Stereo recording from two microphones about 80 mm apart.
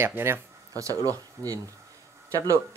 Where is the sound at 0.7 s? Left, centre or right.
Right.